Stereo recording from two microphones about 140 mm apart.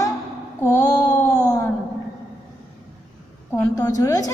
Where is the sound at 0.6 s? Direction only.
25° left (ahead or behind).